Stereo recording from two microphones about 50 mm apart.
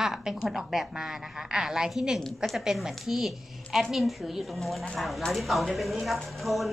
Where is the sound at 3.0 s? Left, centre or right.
Centre.